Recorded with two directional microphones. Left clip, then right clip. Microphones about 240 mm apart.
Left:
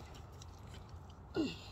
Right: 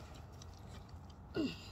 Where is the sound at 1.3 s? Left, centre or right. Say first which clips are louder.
Left 1 dB; right.